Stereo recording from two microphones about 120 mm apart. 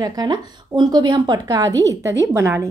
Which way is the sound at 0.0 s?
35° right (ahead or behind).